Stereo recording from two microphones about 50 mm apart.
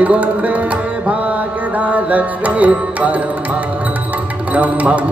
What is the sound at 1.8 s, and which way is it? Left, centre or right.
Carnatic music, right.